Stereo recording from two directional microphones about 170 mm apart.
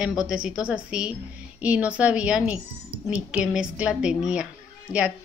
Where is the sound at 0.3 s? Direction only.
5° right (ahead or behind).